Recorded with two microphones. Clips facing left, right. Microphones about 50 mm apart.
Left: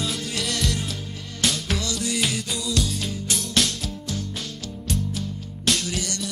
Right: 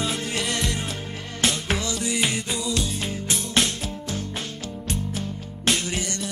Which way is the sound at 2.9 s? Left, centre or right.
Right.